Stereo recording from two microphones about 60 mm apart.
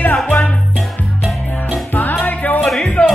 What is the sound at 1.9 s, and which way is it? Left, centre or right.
Music, left.